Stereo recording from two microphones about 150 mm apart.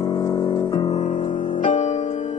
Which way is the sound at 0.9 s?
50° left (ahead or behind).